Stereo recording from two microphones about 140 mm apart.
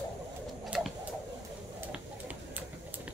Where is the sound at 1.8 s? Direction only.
10° right (ahead or behind).